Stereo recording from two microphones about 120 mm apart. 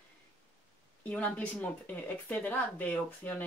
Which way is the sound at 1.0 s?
15° left (ahead or behind).